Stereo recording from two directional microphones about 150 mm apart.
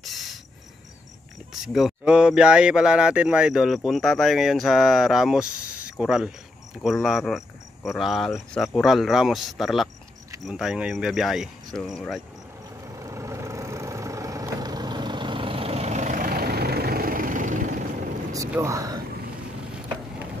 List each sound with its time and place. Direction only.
0.0 s insect: centre (ahead or behind)
1.5 s speech: centre (ahead or behind)
12.8 s vehicle: 20° right (ahead or behind); by 17.8 s 60° right (ahead or behind)
18.6 s speech: 20° right (ahead or behind)